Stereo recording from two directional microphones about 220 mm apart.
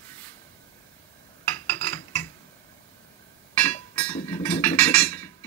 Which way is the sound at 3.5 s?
5° left (ahead or behind).